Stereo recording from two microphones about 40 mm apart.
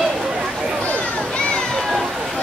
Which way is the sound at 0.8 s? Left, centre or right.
Left.